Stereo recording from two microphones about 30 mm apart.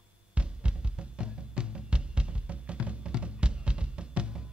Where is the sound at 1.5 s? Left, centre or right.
Right.